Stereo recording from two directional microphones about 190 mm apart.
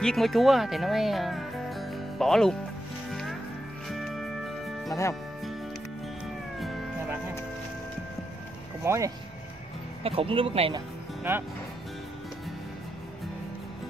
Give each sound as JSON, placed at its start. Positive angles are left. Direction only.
{"t": 0.0, "sound": "speech", "side_deg": 0}
{"t": 3.1, "sound": "music", "side_deg": 0}
{"t": 4.8, "sound": "speech", "side_deg": 15}
{"t": 6.2, "sound": "cat", "side_deg": 0}
{"t": 8.8, "sound": "speech", "side_deg": -15}
{"t": 10.0, "sound": "speech", "side_deg": -30}